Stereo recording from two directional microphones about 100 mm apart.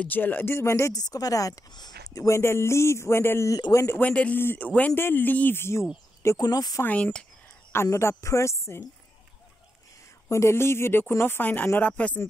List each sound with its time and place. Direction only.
0.0 s speech: 20° left (ahead or behind)
4.1 s speech: 15° left (ahead or behind)
6.2 s speech: 40° left (ahead or behind)
6.8 s speech: 15° left (ahead or behind)
7.7 s speech: 25° left (ahead or behind)
10.3 s speech: 25° left (ahead or behind)